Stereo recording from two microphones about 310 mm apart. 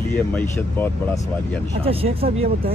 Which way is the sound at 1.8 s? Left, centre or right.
Centre.